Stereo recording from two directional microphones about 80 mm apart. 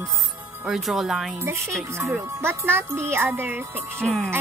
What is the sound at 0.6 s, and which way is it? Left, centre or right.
Speech, centre.